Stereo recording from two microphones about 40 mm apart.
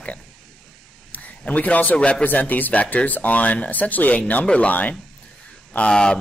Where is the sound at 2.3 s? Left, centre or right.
Left.